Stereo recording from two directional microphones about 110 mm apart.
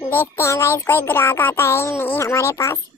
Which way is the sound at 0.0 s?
20° left (ahead or behind).